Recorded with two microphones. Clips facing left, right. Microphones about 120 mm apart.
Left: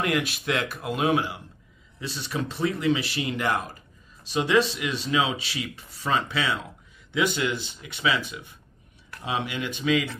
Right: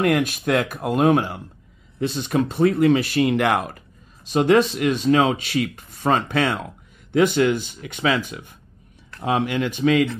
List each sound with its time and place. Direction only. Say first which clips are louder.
0.0 s speech: right 7 dB; 50° right (ahead or behind)
4.3 s speech: right 6 dB; 50° right (ahead or behind)